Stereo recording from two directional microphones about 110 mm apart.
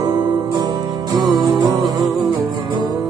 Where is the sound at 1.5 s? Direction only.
35° right (ahead or behind).